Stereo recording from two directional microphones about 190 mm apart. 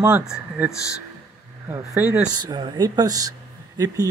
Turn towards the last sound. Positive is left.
turn(degrees=-20)  # may be behind; listen again after turning